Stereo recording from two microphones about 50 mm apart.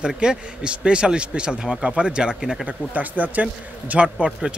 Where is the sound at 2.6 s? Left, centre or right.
Right.